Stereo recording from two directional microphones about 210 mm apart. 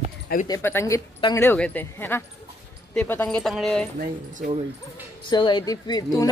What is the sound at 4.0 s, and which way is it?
Speech, 35° right (ahead or behind).